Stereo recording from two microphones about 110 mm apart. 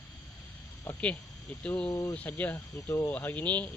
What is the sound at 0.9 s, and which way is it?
Speech, 15° left (ahead or behind).